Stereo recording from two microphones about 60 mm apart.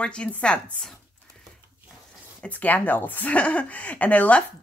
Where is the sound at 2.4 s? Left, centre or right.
Left.